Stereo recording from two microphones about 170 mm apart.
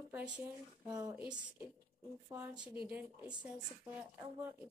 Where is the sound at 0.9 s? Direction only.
20° right (ahead or behind).